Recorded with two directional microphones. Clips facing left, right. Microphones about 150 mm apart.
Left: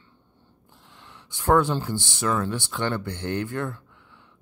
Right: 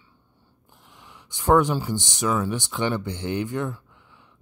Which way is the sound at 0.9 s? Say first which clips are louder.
Even; 15° right (ahead or behind).